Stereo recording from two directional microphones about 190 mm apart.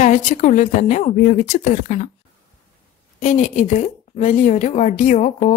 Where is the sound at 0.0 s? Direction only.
40° left (ahead or behind).